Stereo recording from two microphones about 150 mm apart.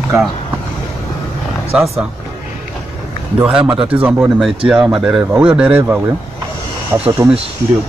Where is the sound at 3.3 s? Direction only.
10° right (ahead or behind).